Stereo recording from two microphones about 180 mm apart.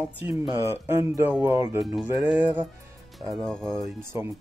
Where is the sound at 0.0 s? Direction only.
10° right (ahead or behind).